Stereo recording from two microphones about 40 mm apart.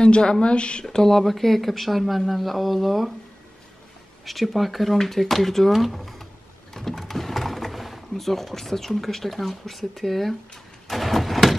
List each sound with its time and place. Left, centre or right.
0.0 s speech: left
0.8 s speech: centre
4.2 s speech: centre
6.7 s sewing machine: centre